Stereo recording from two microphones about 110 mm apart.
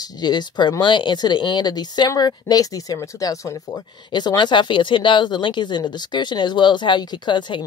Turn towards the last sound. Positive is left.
turn(degrees=45)  # may be behind; listen again after turning